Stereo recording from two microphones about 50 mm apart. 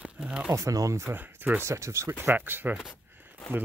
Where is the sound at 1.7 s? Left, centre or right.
Right.